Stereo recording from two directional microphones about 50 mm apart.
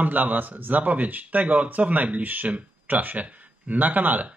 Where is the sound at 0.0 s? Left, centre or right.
Right.